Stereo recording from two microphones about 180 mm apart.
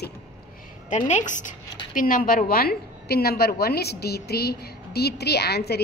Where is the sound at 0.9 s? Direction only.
40° left (ahead or behind).